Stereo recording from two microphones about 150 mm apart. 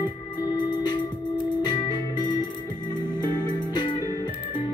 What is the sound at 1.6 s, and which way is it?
Music, 30° left (ahead or behind).